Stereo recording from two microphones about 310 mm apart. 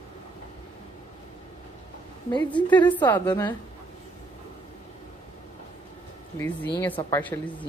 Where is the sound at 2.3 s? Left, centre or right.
Centre.